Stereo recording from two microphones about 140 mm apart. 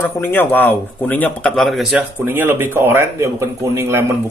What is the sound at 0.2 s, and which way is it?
Speech, 15° left (ahead or behind).